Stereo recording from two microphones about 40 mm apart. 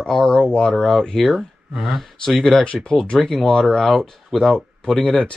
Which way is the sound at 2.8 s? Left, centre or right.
Centre.